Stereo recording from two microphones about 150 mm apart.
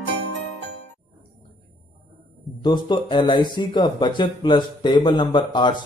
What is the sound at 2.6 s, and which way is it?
Speech, 30° left (ahead or behind).